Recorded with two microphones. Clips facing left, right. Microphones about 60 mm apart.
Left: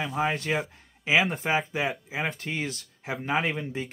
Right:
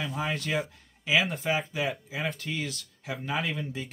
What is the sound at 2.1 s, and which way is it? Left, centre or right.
Speech, left.